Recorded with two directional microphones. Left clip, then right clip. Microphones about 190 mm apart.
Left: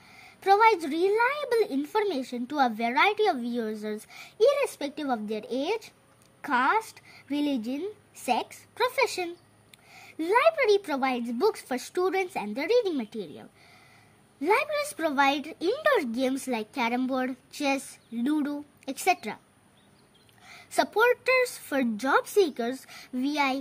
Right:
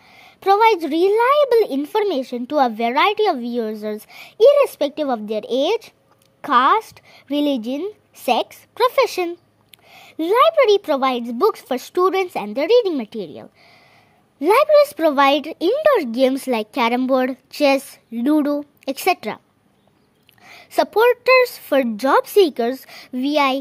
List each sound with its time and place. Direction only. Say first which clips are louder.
0.0 s a woman's voice: right 8 dB; 40° right (ahead or behind)
20.4 s a woman's voice: right 8 dB; 40° right (ahead or behind)